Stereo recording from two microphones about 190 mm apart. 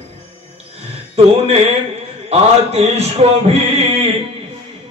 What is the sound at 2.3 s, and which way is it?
A man's voice, 35° right (ahead or behind).